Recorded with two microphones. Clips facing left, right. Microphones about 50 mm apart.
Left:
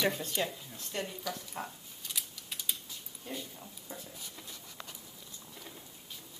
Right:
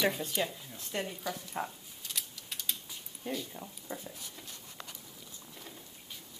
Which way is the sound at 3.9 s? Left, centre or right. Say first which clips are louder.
Right 4 dB; right.